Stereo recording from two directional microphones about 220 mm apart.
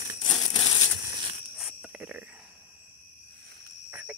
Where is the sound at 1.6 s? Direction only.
5° right (ahead or behind).